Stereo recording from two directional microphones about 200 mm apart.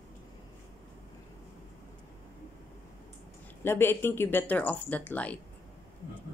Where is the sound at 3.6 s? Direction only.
10° left (ahead or behind).